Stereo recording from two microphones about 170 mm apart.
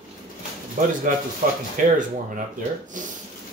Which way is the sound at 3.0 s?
50° right (ahead or behind).